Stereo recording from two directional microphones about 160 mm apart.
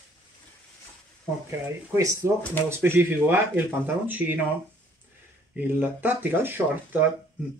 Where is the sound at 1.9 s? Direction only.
20° right (ahead or behind).